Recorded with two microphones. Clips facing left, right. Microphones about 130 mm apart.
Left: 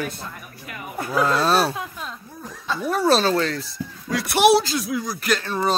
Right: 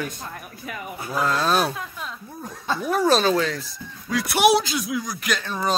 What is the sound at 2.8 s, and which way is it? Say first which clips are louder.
Speech: left 1 dB; 5° right (ahead or behind).